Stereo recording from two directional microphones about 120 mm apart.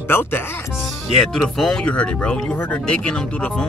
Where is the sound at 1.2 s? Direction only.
5° left (ahead or behind).